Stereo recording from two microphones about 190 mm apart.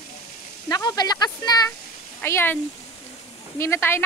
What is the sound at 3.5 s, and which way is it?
Speech, 15° left (ahead or behind).